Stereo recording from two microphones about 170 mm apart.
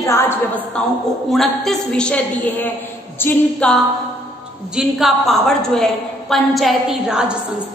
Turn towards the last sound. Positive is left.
turn(degrees=-5)  # may be behind; listen again after turning